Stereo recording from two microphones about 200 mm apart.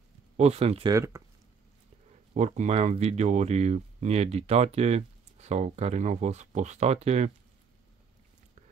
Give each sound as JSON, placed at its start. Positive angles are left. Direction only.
{"t": 0.4, "sound": "speech", "side_deg": -30}
{"t": 0.9, "sound": "speech", "side_deg": -15}
{"t": 2.3, "sound": "speech", "side_deg": -35}